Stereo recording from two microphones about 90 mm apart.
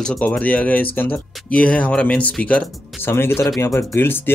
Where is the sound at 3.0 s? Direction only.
25° left (ahead or behind).